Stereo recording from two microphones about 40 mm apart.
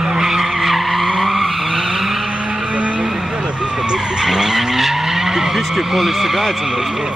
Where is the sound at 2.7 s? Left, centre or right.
Right.